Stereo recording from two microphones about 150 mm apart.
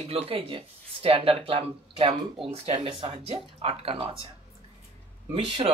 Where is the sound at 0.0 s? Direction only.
40° right (ahead or behind).